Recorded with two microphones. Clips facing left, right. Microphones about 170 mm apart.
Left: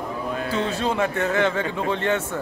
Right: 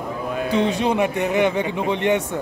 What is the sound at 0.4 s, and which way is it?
Speech, 15° right (ahead or behind).